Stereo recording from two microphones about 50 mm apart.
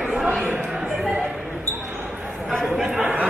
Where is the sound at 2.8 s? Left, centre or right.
Centre.